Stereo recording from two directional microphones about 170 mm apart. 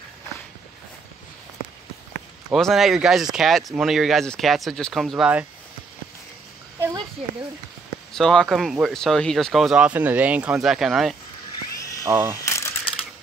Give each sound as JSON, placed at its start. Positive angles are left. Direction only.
{"t": 2.5, "sound": "speech", "side_deg": 0}
{"t": 8.1, "sound": "speech", "side_deg": 5}
{"t": 12.0, "sound": "speech", "side_deg": -15}
{"t": 12.4, "sound": "a sound", "side_deg": 15}